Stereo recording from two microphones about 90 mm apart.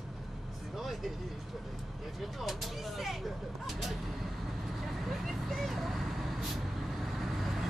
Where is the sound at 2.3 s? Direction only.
Centre (ahead or behind).